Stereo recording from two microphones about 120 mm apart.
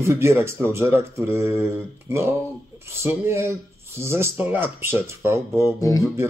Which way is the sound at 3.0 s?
20° right (ahead or behind).